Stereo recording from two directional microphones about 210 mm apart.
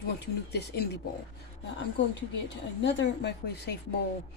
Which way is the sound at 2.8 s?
60° left (ahead or behind).